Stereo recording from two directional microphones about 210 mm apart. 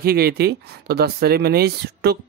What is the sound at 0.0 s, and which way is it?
Speech, 45° right (ahead or behind).